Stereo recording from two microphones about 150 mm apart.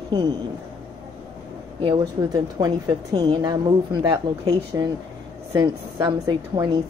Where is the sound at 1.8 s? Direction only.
30° right (ahead or behind).